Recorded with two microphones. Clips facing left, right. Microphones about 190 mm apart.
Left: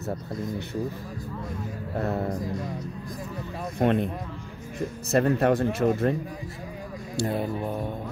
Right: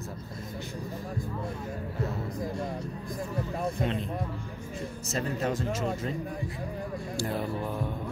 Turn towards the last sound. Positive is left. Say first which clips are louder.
# left 3 dB
turn(degrees=20)  # may be behind; listen again after turning